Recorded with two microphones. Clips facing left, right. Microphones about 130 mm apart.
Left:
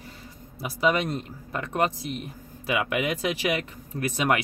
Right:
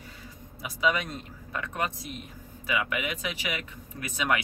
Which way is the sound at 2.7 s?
50° left (ahead or behind).